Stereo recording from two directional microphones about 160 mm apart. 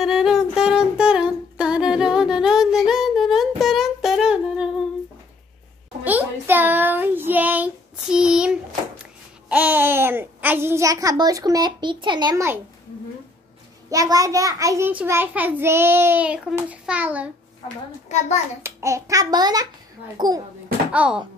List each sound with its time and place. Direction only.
0.0 s music: 5° right (ahead or behind)
6.4 s child singing: 10° right (ahead or behind)
9.5 s a sound: 10° right (ahead or behind); by 12.4 s 25° right (ahead or behind)
13.8 s a child's voice: 20° right (ahead or behind)
18.0 s a child's voice: 45° left (ahead or behind)
18.6 s a child's voice: 20° right (ahead or behind)
20.9 s a child's voice: 10° right (ahead or behind)